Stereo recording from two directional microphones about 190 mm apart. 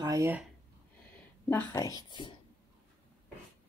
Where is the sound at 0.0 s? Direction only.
15° right (ahead or behind).